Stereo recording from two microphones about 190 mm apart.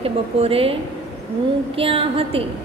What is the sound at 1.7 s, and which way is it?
Speech, 30° right (ahead or behind).